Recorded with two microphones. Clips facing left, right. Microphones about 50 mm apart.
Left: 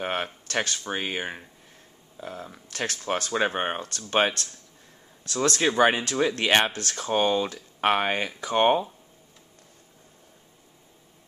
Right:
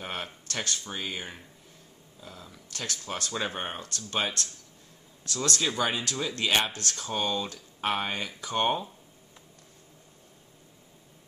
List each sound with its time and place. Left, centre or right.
0.0 s speech: left